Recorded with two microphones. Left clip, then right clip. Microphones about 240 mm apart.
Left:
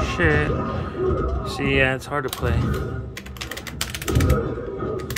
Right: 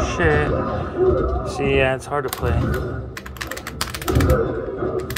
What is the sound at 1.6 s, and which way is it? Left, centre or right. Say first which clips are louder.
Speech: right 1 dB; centre.